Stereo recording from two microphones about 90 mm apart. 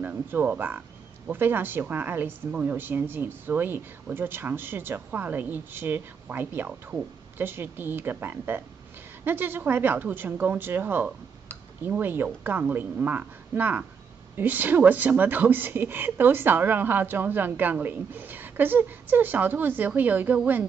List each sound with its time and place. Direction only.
0.0 s speech: 20° right (ahead or behind)